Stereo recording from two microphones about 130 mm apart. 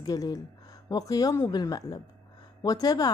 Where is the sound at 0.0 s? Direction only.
30° left (ahead or behind).